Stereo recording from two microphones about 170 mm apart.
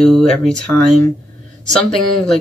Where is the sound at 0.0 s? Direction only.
5° left (ahead or behind).